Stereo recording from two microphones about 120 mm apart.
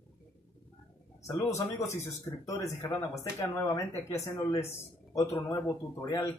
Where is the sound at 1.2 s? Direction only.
25° left (ahead or behind).